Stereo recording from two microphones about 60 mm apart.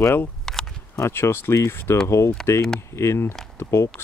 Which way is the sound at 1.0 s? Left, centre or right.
Left.